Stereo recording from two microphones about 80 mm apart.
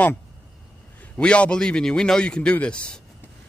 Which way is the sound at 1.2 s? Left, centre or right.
Centre.